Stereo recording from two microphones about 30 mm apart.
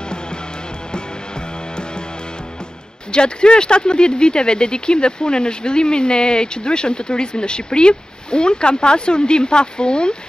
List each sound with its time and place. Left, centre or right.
0.9 s music: left
3.1 s speech: left